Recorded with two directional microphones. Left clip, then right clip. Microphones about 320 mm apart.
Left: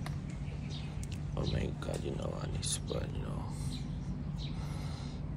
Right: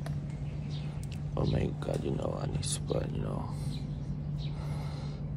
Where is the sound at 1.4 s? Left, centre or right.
Centre.